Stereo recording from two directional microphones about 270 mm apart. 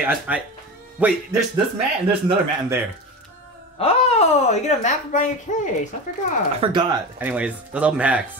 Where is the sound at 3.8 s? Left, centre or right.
Left.